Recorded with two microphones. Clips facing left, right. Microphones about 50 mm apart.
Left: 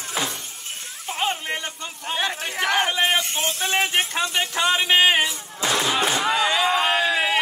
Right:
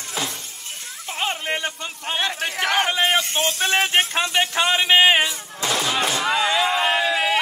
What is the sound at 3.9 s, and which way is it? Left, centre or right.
Speech, right.